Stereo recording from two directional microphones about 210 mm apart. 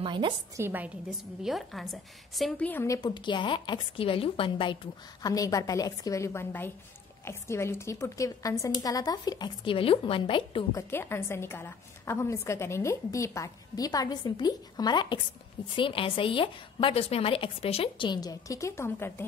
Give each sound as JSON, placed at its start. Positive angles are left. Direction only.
{"t": 0.0, "sound": "a woman's voice", "side_deg": -25}
{"t": 0.6, "sound": "a woman's voice", "side_deg": -10}